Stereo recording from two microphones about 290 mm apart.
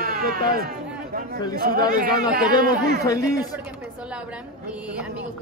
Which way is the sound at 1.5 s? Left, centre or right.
Right.